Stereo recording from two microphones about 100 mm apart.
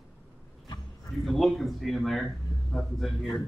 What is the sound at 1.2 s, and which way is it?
Speech, centre (ahead or behind).